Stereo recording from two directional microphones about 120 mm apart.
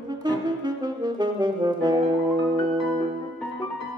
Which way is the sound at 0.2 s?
35° right (ahead or behind).